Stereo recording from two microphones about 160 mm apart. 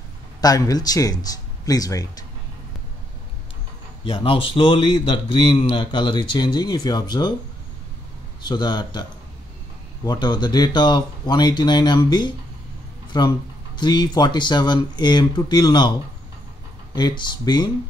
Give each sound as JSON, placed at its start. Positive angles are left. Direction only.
{"t": 0.4, "sound": "speech", "side_deg": 25}
{"t": 4.0, "sound": "a man's voice", "side_deg": 35}
{"t": 8.5, "sound": "speech", "side_deg": 25}
{"t": 10.0, "sound": "speech", "side_deg": 25}
{"t": 16.9, "sound": "speech", "side_deg": 25}